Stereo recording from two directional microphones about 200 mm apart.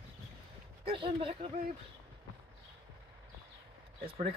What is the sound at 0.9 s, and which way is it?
Speech, 25° right (ahead or behind).